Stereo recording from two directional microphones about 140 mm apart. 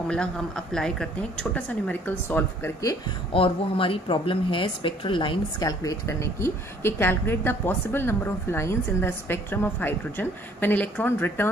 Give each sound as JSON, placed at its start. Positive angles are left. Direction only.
{"t": 0.1, "sound": "speech", "side_deg": 5}
{"t": 3.3, "sound": "speech", "side_deg": 40}